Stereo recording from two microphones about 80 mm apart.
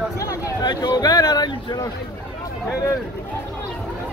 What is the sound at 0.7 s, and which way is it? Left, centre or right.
Speech, left.